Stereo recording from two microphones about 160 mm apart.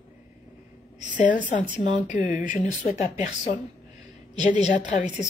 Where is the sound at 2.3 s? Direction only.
55° left (ahead or behind).